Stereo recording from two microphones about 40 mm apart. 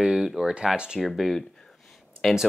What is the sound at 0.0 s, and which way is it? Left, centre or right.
Speech, centre.